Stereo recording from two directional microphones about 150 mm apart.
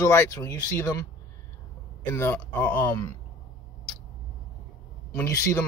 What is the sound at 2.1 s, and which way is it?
Speech, 15° left (ahead or behind).